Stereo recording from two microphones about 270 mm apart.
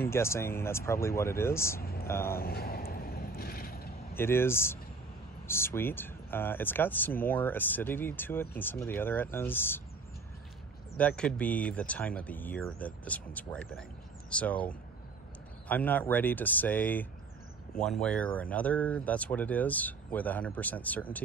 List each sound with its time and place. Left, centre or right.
0.0 s speech: centre
1.8 s speech: left
2.0 s speech: centre
2.3 s vehicle: left
4.2 s speech: centre
11.0 s speech: centre